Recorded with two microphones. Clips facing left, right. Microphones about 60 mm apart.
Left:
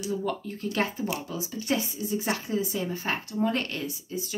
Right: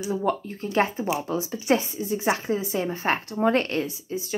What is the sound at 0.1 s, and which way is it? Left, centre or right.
A woman's voice, right.